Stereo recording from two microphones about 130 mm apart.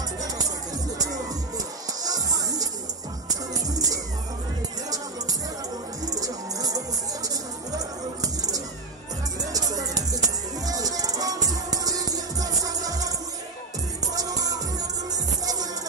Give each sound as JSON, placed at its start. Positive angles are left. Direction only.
{"t": 1.9, "sound": "music", "side_deg": -30}
{"t": 6.0, "sound": "music", "side_deg": -30}
{"t": 14.1, "sound": "music", "side_deg": -25}